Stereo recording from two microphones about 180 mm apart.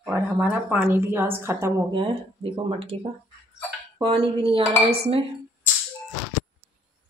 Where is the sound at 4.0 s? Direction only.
30° right (ahead or behind).